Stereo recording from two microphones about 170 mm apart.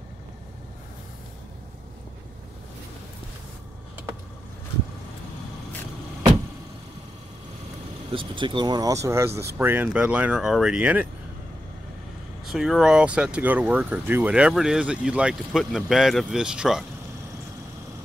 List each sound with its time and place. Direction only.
8.1 s speech: 30° right (ahead or behind); by 11.1 s 10° right (ahead or behind)
12.4 s speech: centre (ahead or behind)